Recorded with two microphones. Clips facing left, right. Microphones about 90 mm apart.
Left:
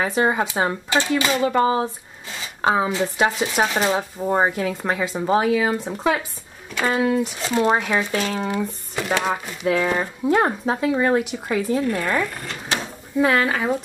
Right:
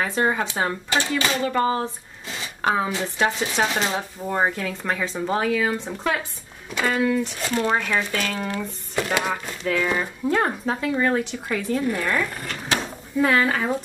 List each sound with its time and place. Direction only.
0.0 s speech: 15° left (ahead or behind)
13.2 s speech: 5° left (ahead or behind)